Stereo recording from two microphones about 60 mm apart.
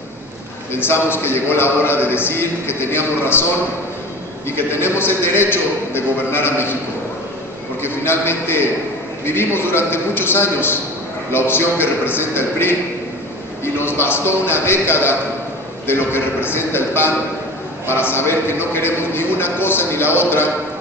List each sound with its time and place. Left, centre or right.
0.7 s speech: left
4.7 s speech: left
7.8 s speech: left
13.7 s speech: left